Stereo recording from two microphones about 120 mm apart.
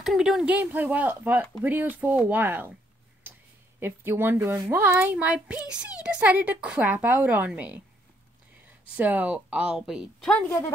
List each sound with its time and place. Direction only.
0.0 s a child's voice: centre (ahead or behind)
3.8 s a child's voice: 20° right (ahead or behind)
8.9 s a child's voice: 15° right (ahead or behind)